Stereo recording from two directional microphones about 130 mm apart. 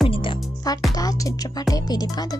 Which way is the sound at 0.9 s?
30° left (ahead or behind).